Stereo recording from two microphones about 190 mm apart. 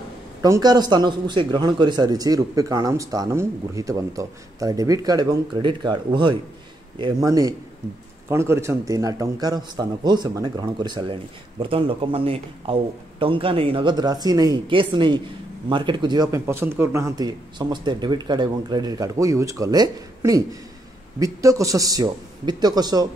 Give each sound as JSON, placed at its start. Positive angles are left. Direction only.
{"t": 0.4, "sound": "a man's voice", "side_deg": -20}